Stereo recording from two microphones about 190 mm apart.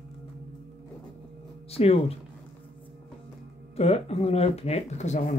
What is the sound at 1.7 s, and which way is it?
Speech, 30° left (ahead or behind).